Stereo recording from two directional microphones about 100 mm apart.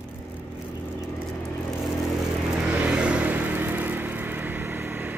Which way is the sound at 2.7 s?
15° right (ahead or behind).